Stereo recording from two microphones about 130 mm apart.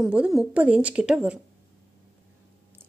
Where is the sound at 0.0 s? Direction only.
5° right (ahead or behind).